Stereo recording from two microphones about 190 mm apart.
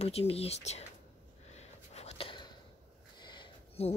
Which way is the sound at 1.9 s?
35° left (ahead or behind).